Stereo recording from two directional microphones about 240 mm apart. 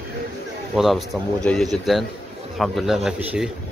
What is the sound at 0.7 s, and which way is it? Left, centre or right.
A man's voice, centre.